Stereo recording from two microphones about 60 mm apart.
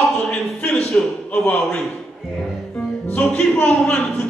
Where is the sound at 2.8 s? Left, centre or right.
Centre.